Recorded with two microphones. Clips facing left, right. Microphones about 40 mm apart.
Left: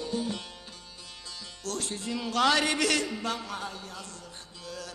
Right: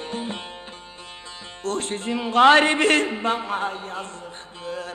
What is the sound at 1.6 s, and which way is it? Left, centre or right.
A man's voice, right.